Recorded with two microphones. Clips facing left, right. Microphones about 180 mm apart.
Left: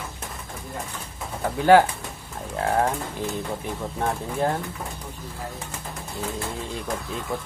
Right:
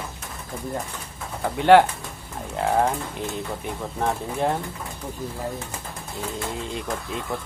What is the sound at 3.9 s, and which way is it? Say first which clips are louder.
Speech: right 1 dB; centre (ahead or behind).